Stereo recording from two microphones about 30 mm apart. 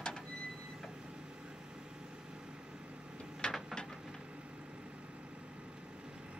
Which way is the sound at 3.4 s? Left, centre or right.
Left.